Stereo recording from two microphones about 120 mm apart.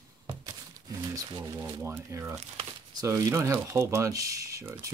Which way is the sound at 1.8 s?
20° right (ahead or behind).